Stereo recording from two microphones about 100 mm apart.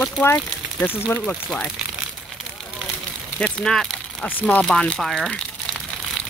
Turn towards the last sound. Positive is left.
turn(degrees=0)  # may be behind; listen again after turning